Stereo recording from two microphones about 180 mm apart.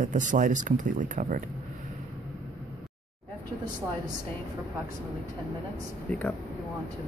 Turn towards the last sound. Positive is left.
turn(degrees=10)  # may be behind; listen again after turning